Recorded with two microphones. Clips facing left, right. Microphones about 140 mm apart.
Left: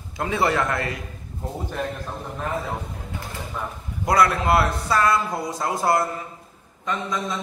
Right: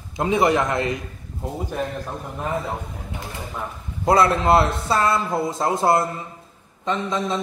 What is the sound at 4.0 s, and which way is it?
A man's voice, 25° right (ahead or behind).